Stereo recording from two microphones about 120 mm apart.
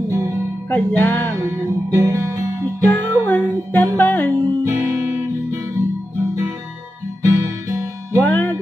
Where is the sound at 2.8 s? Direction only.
15° left (ahead or behind).